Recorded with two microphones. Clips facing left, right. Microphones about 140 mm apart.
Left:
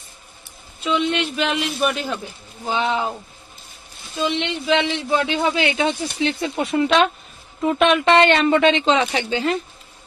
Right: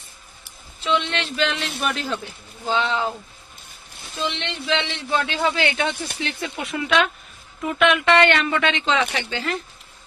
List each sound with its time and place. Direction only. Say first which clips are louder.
0.8 s speech: left 3 dB; 15° left (ahead or behind)
4.2 s speech: left 5 dB; 20° left (ahead or behind)